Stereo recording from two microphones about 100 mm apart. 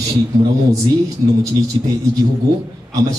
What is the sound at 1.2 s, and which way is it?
Speech, 30° right (ahead or behind).